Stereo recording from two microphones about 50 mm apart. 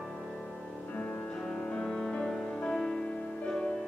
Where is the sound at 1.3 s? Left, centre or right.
Centre.